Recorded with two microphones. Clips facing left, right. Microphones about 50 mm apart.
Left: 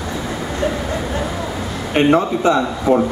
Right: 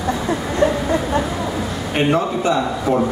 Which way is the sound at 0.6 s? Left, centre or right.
Centre.